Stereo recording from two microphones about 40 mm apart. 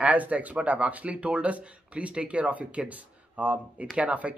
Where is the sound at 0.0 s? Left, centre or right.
Right.